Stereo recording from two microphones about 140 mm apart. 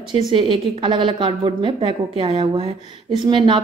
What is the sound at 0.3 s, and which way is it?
A woman's voice, 35° right (ahead or behind).